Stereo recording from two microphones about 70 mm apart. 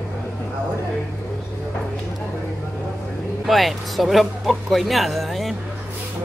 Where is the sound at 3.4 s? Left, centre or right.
Centre.